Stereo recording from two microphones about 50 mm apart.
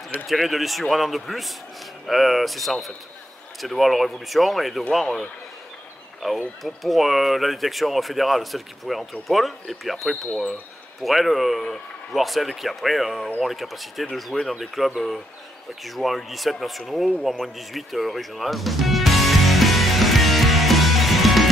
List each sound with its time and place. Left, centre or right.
0.3 s speech: centre
5.0 s a man's voice: centre
6.2 s speech: centre
14.3 s speech: left
14.8 s speech: centre
17.2 s music: centre